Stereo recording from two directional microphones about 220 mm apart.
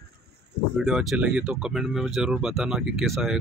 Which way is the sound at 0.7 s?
Centre (ahead or behind).